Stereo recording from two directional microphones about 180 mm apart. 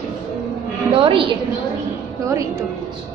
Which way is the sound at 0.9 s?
30° right (ahead or behind).